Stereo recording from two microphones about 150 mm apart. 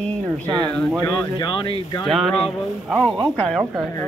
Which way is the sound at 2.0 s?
5° left (ahead or behind).